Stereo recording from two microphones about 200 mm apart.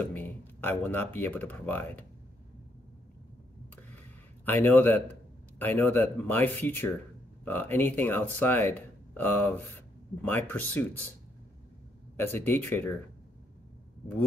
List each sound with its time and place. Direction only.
0.1 s speech: 10° left (ahead or behind)
4.5 s speech: 10° left (ahead or behind)
12.2 s speech: 10° left (ahead or behind)